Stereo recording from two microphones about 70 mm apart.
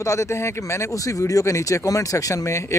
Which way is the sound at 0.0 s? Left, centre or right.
Left.